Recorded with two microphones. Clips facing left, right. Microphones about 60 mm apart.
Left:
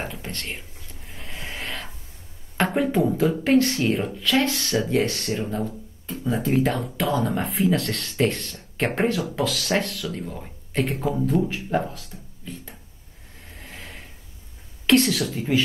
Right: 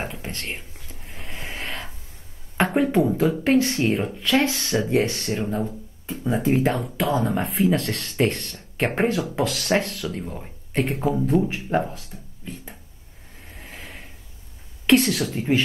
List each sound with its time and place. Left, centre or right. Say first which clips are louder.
0.0 s whispering: right 1 dB; centre
1.0 s a sound: right 1 dB; centre
2.6 s speech: right 2 dB; centre
5.5 s a sound: right 2 dB; centre
6.3 s speech: right 1 dB; centre
13.5 s vehicle: right 1 dB; centre
14.9 s speech: right 1 dB; centre
15.5 s speech: right 1 dB; right